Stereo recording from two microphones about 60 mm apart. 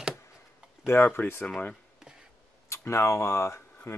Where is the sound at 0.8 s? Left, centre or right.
Left.